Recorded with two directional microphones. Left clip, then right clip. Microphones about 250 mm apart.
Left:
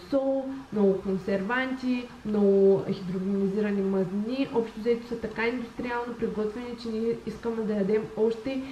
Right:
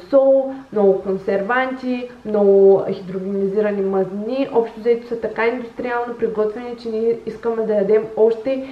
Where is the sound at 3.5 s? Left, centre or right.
Centre.